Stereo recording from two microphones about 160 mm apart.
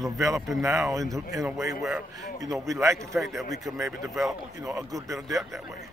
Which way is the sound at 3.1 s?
Centre (ahead or behind).